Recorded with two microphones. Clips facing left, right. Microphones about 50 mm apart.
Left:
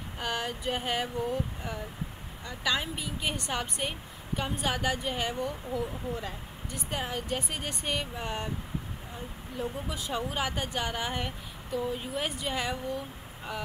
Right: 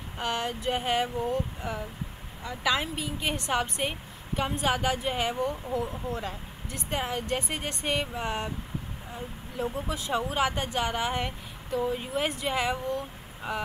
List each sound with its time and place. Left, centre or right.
0.2 s speech: centre
9.6 s speech: centre